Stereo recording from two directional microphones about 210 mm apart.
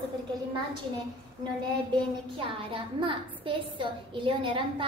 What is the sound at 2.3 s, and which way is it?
A woman's voice, 25° right (ahead or behind).